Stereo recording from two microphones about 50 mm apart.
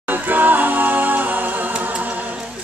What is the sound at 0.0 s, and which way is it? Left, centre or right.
A capella, right.